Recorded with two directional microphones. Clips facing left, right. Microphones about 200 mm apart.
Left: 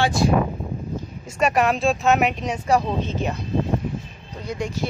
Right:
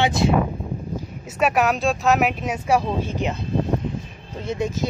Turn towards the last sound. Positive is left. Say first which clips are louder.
# right 3 dB
turn(degrees=-20)  # may be behind; listen again after turning